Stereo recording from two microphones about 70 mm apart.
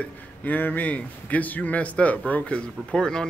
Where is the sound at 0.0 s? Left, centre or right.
Left.